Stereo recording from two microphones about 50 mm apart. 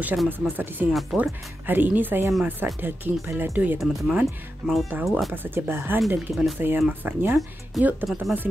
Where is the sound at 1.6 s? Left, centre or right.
Right.